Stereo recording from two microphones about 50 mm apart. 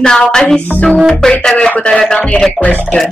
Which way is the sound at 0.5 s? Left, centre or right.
Left.